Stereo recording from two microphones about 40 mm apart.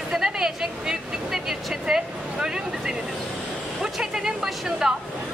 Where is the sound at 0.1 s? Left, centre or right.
Centre.